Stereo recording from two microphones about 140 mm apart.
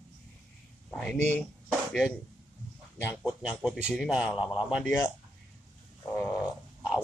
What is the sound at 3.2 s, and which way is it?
Speech, 5° right (ahead or behind).